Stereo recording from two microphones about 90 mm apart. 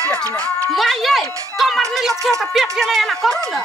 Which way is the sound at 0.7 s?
Centre (ahead or behind).